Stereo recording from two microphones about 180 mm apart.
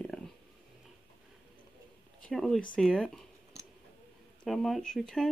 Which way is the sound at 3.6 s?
20° right (ahead or behind).